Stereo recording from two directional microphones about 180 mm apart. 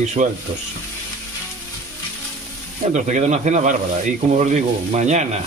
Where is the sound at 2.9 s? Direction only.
40° right (ahead or behind).